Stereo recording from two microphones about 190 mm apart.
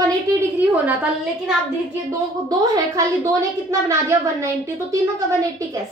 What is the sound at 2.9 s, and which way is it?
A woman's voice, 15° right (ahead or behind).